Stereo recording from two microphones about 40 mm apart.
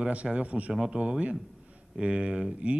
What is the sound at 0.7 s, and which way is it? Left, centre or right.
Speech, centre.